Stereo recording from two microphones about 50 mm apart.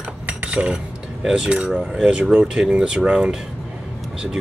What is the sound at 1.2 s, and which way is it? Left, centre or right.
Speech, centre.